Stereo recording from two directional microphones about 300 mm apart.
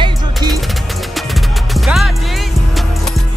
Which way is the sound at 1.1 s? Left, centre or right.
Centre.